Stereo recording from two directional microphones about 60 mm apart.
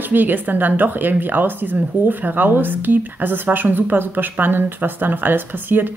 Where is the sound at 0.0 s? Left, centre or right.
Right.